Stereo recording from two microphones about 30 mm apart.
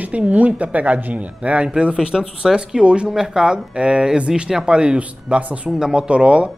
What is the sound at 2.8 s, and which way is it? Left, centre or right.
Speech, right.